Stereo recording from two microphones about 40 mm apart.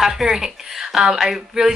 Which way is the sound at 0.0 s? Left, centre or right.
Centre.